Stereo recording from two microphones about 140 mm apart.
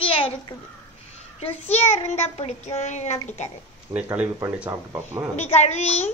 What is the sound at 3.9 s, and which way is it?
Speech, 15° right (ahead or behind).